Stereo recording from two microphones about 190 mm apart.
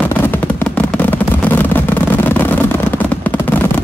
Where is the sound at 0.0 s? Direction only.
10° left (ahead or behind).